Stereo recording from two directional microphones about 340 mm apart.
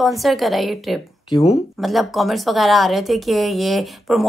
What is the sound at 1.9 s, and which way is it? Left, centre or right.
Speech, centre.